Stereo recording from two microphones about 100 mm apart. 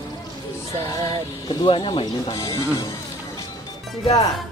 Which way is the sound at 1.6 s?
60° left (ahead or behind).